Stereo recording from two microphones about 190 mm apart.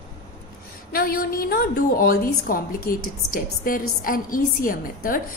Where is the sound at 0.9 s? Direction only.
50° left (ahead or behind).